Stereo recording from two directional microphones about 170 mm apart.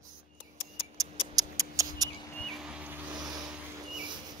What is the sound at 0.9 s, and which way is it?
Mouse, 20° right (ahead or behind).